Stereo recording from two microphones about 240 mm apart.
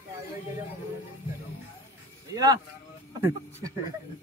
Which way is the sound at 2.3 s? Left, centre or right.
Centre.